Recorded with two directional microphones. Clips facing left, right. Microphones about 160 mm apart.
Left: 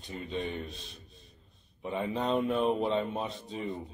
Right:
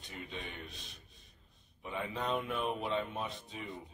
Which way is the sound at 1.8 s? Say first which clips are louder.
Left 6 dB; 30° left (ahead or behind).